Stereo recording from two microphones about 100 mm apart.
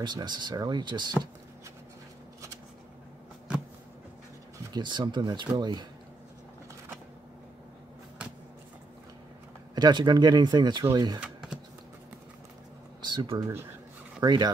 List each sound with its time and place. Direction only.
0.0 s speech: 50° right (ahead or behind)
4.7 s speech: 50° right (ahead or behind)
8.2 s a sound: 15° right (ahead or behind)
9.8 s speech: 50° right (ahead or behind)
11.1 s typing: 10° right (ahead or behind)
13.1 s speech: 50° right (ahead or behind)